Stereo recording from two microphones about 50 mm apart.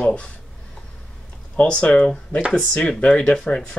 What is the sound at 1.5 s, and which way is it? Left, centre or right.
Speech, left.